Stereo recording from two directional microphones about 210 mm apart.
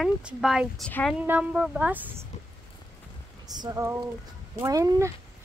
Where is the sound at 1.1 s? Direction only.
5° right (ahead or behind).